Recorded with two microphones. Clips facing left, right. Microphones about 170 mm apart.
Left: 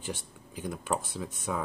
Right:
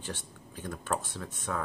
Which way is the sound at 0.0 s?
10° left (ahead or behind).